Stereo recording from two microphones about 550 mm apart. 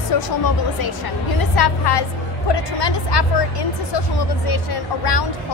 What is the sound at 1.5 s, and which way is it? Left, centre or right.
Speech, left.